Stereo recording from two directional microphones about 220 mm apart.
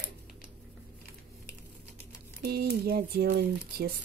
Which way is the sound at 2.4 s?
45° right (ahead or behind).